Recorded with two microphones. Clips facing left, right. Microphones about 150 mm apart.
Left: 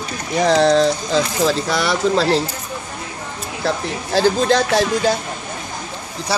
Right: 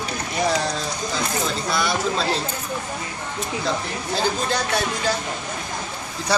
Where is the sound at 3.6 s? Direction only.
85° left.